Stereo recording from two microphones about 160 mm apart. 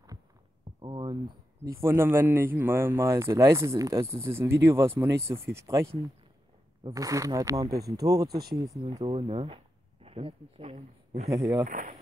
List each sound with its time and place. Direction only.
0.7 s a sound: 30° right (ahead or behind)
1.8 s speech: 15° right (ahead or behind)
8.8 s speech: 45° right (ahead or behind)
11.6 s speech: 55° right (ahead or behind)